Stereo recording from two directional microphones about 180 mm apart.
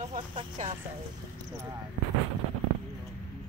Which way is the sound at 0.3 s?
30° right (ahead or behind).